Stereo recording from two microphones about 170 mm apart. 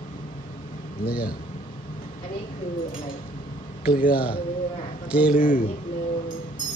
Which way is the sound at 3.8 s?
60° left (ahead or behind).